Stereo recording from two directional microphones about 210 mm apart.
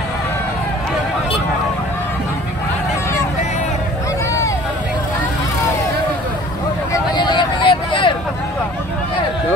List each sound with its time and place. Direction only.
6.9 s vehicle: 20° left (ahead or behind)